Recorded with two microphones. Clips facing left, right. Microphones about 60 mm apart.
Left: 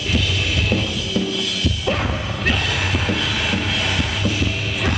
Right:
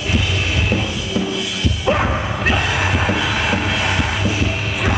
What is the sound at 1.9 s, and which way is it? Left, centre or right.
Music, right.